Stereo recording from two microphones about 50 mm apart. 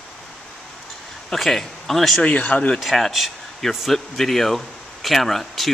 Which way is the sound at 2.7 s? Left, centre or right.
Centre.